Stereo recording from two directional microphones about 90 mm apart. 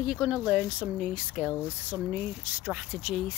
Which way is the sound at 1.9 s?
20° right (ahead or behind).